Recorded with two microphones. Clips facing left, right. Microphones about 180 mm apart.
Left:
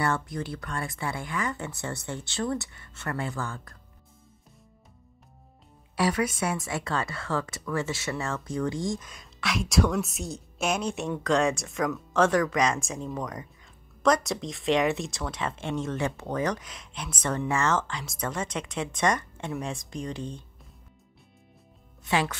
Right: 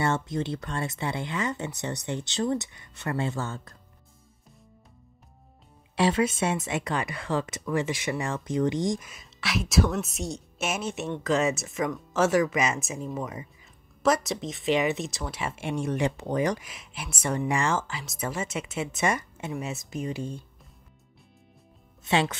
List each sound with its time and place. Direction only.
0.0 s speech: 20° right (ahead or behind)
5.9 s speech: 25° right (ahead or behind)
9.1 s a woman's voice: centre (ahead or behind)
22.0 s speech: 25° right (ahead or behind)